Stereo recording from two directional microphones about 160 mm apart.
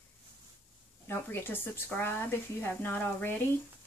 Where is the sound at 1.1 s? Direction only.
15° left (ahead or behind).